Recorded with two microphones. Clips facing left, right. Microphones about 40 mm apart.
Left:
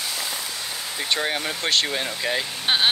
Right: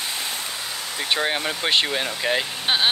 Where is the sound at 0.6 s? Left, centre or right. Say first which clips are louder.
Right 1 dB; centre.